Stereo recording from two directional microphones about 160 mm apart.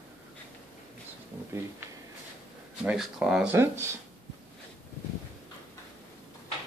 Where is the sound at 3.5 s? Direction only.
15° right (ahead or behind).